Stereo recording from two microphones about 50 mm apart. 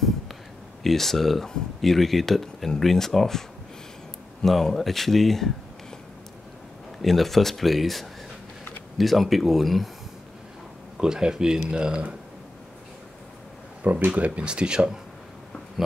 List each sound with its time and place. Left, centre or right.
0.8 s speech: centre
7.0 s speech: centre
11.0 s speech: centre
13.8 s speech: right; by 15.0 s centre